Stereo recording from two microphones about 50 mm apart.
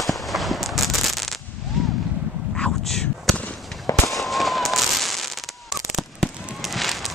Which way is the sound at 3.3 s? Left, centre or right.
Left.